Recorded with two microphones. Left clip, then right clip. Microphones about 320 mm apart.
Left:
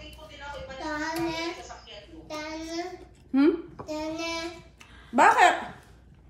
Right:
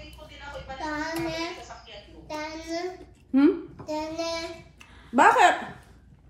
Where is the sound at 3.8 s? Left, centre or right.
Centre.